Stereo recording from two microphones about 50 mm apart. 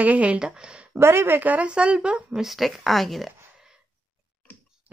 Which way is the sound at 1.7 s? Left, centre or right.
Right.